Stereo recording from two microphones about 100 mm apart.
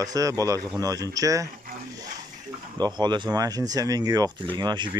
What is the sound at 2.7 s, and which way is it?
Speech, 45° right (ahead or behind).